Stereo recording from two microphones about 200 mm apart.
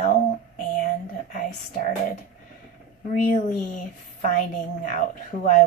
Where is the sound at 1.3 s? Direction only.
40° left (ahead or behind).